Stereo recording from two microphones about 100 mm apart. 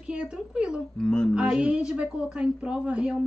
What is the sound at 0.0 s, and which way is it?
Speech, 10° right (ahead or behind).